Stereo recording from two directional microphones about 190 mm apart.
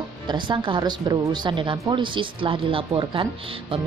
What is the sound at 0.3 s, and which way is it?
A woman's voice, 25° right (ahead or behind).